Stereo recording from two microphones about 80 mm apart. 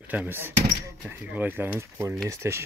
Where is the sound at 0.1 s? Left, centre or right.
Right.